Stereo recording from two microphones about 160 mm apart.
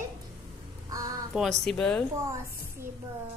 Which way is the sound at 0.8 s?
20° right (ahead or behind).